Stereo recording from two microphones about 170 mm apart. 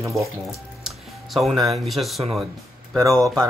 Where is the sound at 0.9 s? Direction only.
Centre (ahead or behind).